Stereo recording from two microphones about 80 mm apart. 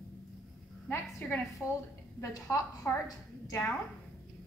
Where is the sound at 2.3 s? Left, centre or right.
Left.